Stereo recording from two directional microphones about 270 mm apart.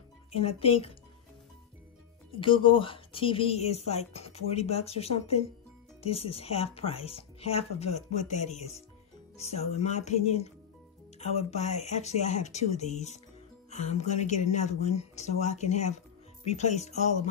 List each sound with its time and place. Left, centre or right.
0.3 s speech: left
2.3 s speech: centre